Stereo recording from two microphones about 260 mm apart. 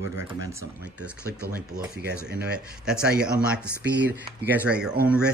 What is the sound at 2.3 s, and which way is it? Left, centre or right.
Speech, right.